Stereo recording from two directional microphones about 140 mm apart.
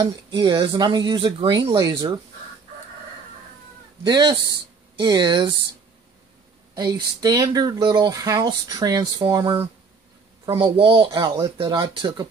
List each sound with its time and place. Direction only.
0.0 s speech: 30° right (ahead or behind)
4.0 s speech: 30° right (ahead or behind)
6.7 s speech: 30° right (ahead or behind)